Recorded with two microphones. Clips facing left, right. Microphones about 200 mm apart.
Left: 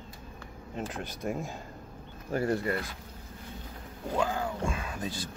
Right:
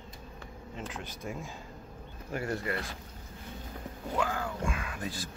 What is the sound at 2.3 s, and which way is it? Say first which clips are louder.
Speech: left 5 dB; 35° left (ahead or behind).